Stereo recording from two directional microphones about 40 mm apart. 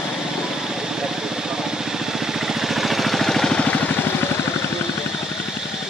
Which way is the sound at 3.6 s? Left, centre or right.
Left.